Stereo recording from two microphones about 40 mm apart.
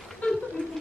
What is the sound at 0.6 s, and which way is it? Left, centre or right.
Music, left.